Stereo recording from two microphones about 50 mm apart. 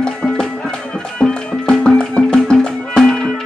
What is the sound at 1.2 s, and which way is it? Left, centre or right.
Music, centre.